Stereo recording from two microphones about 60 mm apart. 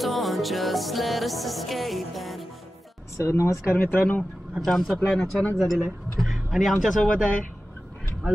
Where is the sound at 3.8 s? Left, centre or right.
Left.